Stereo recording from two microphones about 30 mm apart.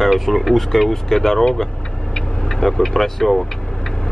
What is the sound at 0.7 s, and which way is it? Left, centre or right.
Speech, centre.